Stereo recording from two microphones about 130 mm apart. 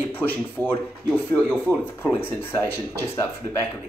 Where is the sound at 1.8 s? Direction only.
15° left (ahead or behind).